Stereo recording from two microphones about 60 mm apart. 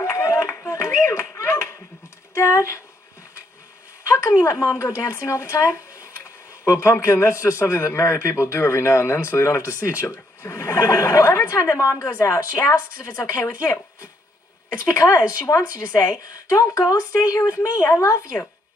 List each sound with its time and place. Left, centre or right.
0.1 s a sound: left
4.1 s a man's voice: left
15.4 s a woman's voice: left